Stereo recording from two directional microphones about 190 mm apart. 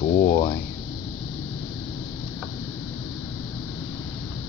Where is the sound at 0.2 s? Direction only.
25° left (ahead or behind).